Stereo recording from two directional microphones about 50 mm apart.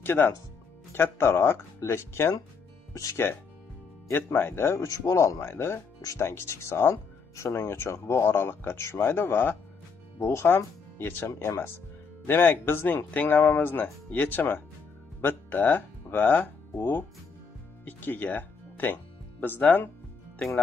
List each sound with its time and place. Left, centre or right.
0.0 s speech: left
0.9 s speech: left
2.9 s speech: left
4.1 s speech: left
4.7 s speech: left
5.4 s speech: left
10.2 s speech: left
10.5 s speech: left
11.2 s speech: left
12.3 s speech: left
16.1 s music: left
16.7 s speech: left
17.8 s speech: left
20.3 s speech: centre